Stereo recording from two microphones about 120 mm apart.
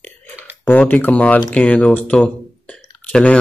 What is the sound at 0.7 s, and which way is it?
Speech, 15° left (ahead or behind).